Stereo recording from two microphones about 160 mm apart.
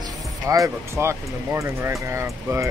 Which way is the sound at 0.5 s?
20° right (ahead or behind).